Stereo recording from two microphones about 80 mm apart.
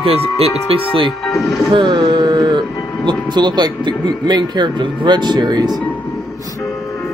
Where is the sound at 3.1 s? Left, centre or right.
Right.